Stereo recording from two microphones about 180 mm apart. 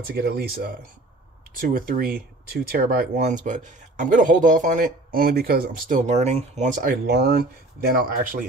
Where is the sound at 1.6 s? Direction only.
50° right (ahead or behind).